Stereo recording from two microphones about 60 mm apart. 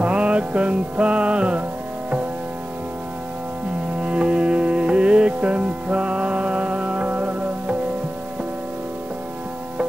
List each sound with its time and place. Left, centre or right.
0.0 s music: centre
4.0 s music: centre